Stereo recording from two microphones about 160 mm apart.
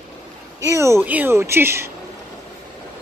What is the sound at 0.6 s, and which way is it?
Speech, 20° right (ahead or behind).